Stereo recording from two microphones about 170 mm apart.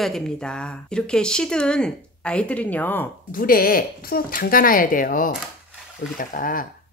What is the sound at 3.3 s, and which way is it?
Speech, 55° left (ahead or behind).